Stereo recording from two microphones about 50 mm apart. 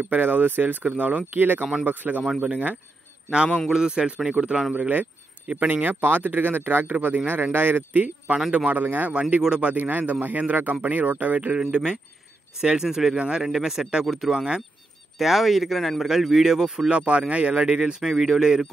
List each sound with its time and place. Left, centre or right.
0.0 s speech: right
3.7 s speech: centre; by 9.1 s right
9.1 s speech: right
11.7 s speech: centre
13.5 s speech: centre
14.0 s speech: centre
14.3 s speech: centre
15.1 s speech: centre
16.9 s speech: right
18.0 s speech: centre